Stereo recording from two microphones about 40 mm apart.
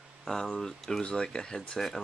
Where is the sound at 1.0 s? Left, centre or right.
Left.